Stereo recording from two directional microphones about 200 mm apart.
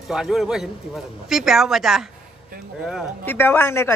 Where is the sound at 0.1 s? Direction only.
Centre (ahead or behind).